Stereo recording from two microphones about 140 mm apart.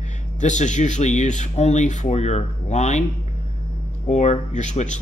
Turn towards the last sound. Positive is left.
turn(degrees=55)  # may be behind; listen again after turning